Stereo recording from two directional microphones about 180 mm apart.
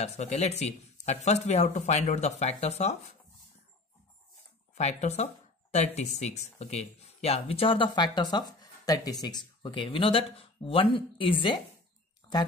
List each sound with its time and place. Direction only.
0.0 s speech: 40° left (ahead or behind)
4.7 s speech: 40° left (ahead or behind)